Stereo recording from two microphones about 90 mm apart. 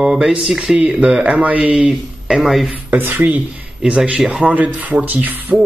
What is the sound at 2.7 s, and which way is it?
Speech, 20° right (ahead or behind).